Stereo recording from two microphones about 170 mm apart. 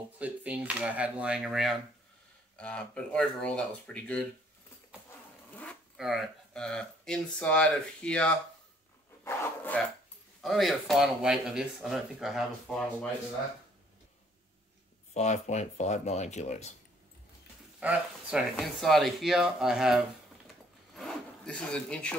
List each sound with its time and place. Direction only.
0.2 s speech: 10° right (ahead or behind); by 4.3 s 10° left (ahead or behind)
5.5 s zipper: 10° left (ahead or behind)
5.9 s speech: centre (ahead or behind)
15.1 s speech: 40° left (ahead or behind)
17.7 s speech: 5° right (ahead or behind)